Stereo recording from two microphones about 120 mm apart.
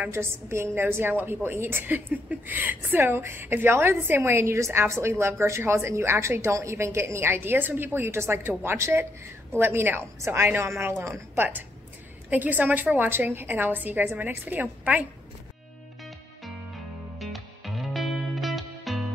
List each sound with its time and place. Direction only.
0.0 s a woman's voice: 20° right (ahead or behind)
17.2 s music: centre (ahead or behind)